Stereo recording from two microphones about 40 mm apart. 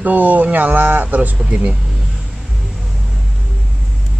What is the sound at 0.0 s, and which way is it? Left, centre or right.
Speech, right.